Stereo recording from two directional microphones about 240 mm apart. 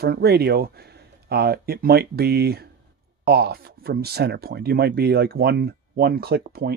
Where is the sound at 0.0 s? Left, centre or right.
Right.